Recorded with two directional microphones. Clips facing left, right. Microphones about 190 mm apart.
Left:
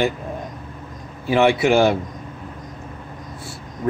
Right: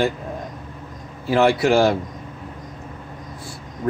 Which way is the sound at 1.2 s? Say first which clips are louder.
Left 1 dB; centre (ahead or behind).